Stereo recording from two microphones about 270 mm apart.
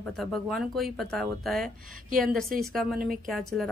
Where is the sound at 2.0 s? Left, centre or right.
Right.